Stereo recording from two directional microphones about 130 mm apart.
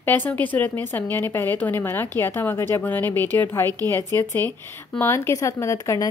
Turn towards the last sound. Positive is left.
turn(degrees=20)  # may be behind; listen again after turning